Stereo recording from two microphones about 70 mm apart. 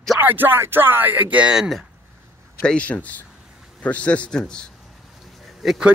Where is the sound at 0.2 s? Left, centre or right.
Right.